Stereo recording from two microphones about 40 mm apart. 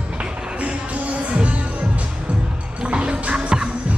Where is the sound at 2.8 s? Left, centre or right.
Right.